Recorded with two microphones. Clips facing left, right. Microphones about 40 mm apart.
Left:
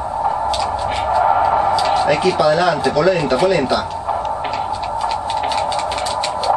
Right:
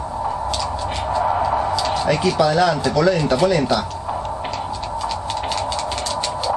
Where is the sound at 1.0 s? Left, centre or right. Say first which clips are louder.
Left 5 dB; centre.